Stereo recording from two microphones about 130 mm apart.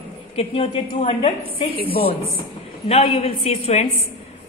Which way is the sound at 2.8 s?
50° left (ahead or behind).